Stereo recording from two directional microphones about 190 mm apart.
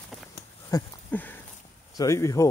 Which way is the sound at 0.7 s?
15° left (ahead or behind).